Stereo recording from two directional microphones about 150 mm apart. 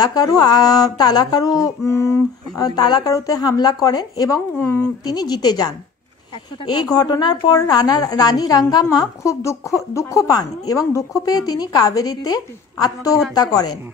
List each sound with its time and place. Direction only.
0.0 s a woman's voice: 25° left (ahead or behind)
5.1 s a woman's voice: 25° left (ahead or behind)